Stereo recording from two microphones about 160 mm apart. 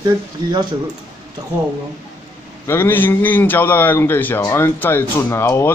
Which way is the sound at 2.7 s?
15° left (ahead or behind).